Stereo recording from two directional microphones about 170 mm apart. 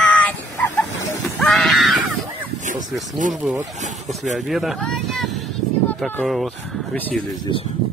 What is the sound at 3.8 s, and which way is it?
Speech, 45° right (ahead or behind).